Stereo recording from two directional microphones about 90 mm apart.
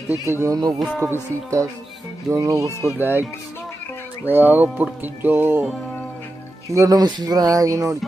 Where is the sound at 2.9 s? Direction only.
20° right (ahead or behind).